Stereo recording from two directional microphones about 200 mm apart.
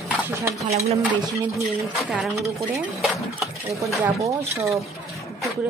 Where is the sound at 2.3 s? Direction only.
15° right (ahead or behind).